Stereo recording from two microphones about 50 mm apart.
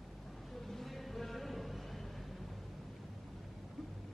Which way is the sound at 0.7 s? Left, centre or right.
Centre.